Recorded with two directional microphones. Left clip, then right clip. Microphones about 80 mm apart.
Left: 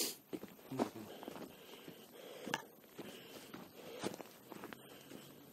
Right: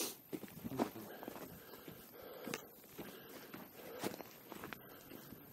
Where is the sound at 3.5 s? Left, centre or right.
Centre.